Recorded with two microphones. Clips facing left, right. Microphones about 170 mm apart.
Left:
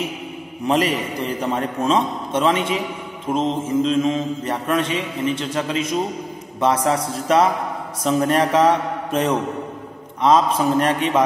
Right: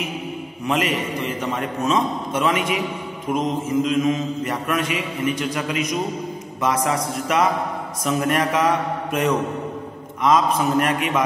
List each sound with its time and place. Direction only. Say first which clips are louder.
0.7 s a man's voice: left 3 dB; 35° left (ahead or behind)
3.3 s mantra: left 2 dB; 30° left (ahead or behind)